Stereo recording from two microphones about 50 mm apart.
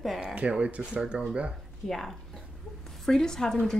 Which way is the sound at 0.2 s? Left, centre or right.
Right.